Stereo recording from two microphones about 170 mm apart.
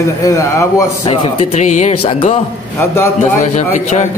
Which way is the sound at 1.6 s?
45° left (ahead or behind).